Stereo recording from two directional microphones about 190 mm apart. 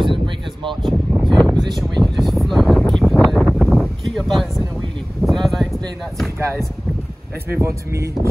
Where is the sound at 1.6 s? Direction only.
20° right (ahead or behind).